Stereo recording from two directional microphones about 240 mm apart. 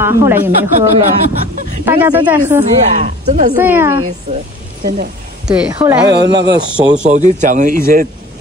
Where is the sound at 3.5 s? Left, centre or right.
Centre.